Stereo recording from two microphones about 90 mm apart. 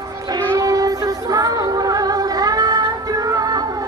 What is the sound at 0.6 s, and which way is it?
Music, 40° right (ahead or behind).